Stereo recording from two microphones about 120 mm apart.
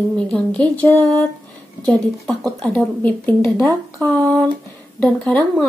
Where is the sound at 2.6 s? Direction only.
15° left (ahead or behind).